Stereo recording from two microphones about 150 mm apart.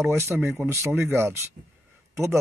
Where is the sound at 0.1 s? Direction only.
15° right (ahead or behind).